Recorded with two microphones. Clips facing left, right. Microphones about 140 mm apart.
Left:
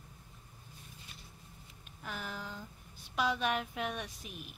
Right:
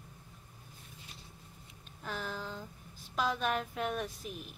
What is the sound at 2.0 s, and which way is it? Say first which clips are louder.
Speech: right 3 dB; 30° right (ahead or behind).